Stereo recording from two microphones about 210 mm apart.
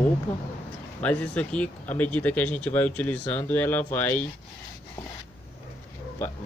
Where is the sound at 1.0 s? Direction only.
5° left (ahead or behind).